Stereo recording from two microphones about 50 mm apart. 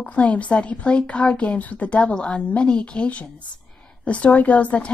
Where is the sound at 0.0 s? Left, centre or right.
Left.